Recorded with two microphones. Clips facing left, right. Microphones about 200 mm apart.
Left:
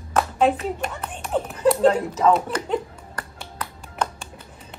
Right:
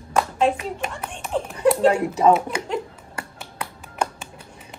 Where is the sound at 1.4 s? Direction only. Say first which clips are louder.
Even; 10° right (ahead or behind).